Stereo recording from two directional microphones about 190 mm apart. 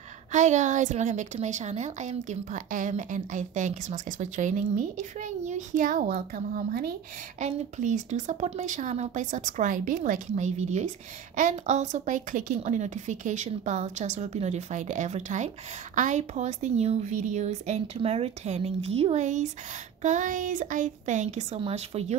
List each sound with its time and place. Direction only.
0.3 s a woman's voice: 40° right (ahead or behind)
7.3 s a woman's voice: 40° right (ahead or behind)